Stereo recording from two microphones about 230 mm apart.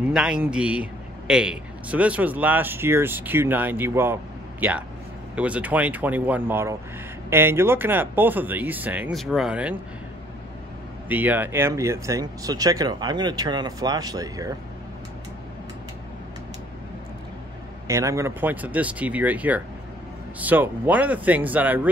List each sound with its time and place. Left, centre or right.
0.1 s a man's voice: centre
11.1 s a man's voice: centre
17.8 s a man's voice: centre